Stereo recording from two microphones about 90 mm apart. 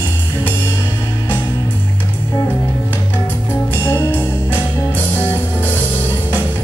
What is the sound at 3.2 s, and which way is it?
Music, 20° left (ahead or behind).